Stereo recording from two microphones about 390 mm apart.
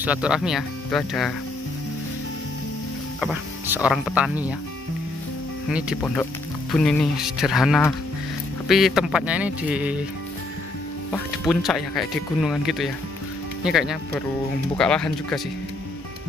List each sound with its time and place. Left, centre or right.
0.0 s speech: centre
3.2 s speech: centre
5.7 s speech: centre
11.1 s speech: centre